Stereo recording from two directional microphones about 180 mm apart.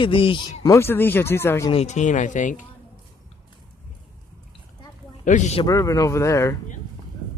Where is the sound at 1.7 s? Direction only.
40° left (ahead or behind).